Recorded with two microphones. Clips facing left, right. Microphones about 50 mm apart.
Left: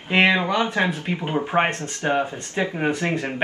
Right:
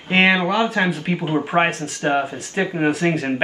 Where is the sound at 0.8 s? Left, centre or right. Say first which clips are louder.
Right 2 dB; right.